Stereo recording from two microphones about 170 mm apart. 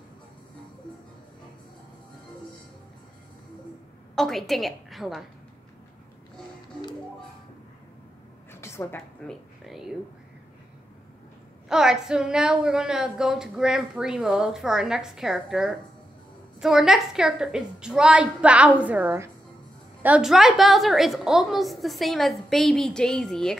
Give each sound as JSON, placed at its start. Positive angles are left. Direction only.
{"t": 4.1, "sound": "a woman's voice", "side_deg": 0}
{"t": 8.5, "sound": "a sound", "side_deg": 15}
{"t": 9.3, "sound": "speech", "side_deg": 0}
{"t": 11.7, "sound": "a woman's voice", "side_deg": -5}